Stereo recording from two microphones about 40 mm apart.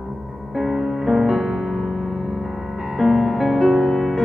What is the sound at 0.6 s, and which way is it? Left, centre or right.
Music, centre.